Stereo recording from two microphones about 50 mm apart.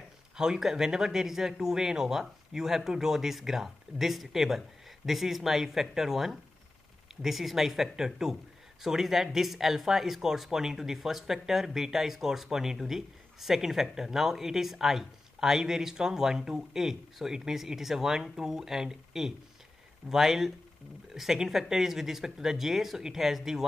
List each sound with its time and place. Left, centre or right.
0.4 s speech: centre